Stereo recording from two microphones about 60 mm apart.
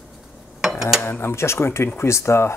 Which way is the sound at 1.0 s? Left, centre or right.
Left.